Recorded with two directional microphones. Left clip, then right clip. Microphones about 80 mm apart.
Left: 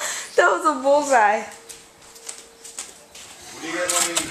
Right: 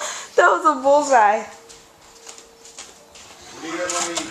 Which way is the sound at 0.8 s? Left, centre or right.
Centre.